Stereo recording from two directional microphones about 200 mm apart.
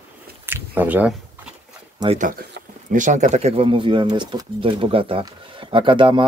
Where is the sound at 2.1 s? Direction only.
45° right (ahead or behind).